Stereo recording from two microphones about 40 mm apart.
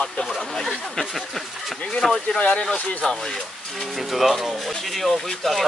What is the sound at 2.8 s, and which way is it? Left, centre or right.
Speech, left.